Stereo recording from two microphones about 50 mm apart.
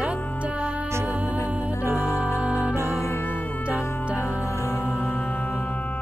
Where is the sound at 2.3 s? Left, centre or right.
Right.